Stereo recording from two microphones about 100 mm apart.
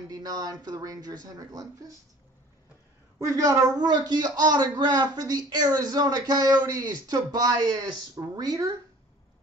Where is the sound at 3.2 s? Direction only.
35° right (ahead or behind).